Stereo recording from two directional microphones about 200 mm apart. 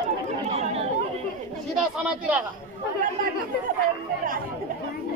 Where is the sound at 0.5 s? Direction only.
35° right (ahead or behind).